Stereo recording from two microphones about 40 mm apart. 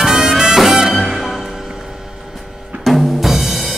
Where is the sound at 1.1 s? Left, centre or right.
Centre.